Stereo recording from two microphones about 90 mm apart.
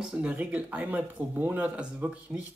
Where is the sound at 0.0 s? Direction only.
10° right (ahead or behind).